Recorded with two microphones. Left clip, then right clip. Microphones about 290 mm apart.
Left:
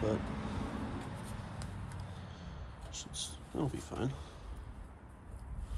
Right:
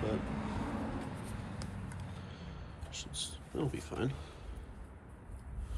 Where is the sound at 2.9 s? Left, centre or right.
Centre.